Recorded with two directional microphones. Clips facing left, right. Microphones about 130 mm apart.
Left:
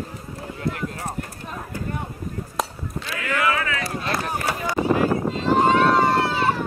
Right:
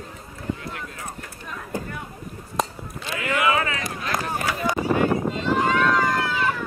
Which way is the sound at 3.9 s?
30° left (ahead or behind).